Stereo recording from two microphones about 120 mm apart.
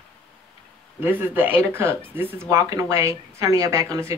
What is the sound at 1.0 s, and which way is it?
Speech, 15° right (ahead or behind).